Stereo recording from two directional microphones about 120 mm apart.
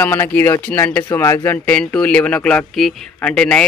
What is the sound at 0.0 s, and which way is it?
Speech, 15° left (ahead or behind).